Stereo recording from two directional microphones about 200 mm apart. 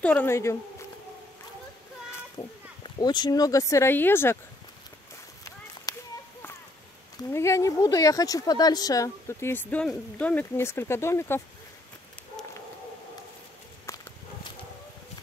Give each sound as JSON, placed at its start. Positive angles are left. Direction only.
{"t": 0.0, "sound": "speech", "side_deg": 10}
{"t": 2.3, "sound": "speech", "side_deg": 20}
{"t": 5.9, "sound": "a sound", "side_deg": 20}
{"t": 7.3, "sound": "speech", "side_deg": 15}